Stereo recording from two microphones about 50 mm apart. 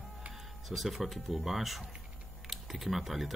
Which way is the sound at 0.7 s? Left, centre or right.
Centre.